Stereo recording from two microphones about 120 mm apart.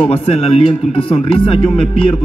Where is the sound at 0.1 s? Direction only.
55° left (ahead or behind).